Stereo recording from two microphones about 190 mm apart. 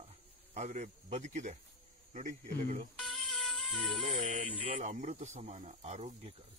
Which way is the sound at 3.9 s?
30° right (ahead or behind).